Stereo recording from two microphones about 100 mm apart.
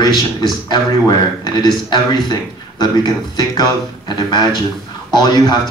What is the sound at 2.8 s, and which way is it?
Speech, 45° left (ahead or behind).